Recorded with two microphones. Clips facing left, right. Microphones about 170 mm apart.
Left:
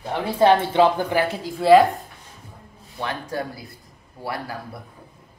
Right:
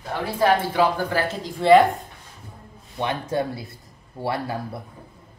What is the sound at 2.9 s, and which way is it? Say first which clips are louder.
Speech: right 4 dB; 20° right (ahead or behind).